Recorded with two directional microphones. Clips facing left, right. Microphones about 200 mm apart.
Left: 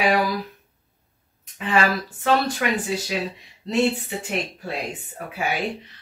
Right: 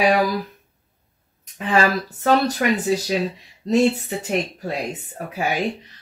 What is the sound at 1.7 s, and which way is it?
Speech, 40° right (ahead or behind).